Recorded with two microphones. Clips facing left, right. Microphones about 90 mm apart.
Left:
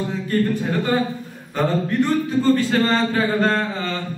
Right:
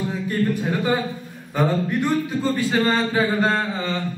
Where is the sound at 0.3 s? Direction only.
10° right (ahead or behind).